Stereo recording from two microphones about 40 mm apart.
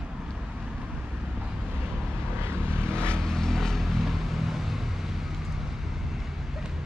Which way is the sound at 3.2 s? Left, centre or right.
Centre.